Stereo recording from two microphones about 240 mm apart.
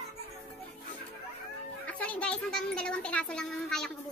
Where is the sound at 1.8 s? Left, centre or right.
Centre.